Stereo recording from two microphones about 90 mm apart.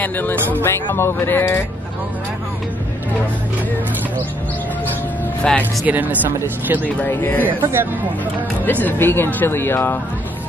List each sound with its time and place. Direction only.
0.0 s speech: 20° left (ahead or behind)
5.5 s speech: 10° left (ahead or behind)
5.9 s speech: 20° right (ahead or behind)
7.1 s speech: 25° left (ahead or behind)
7.4 s speech: 25° right (ahead or behind)
8.6 s speech: 20° left (ahead or behind)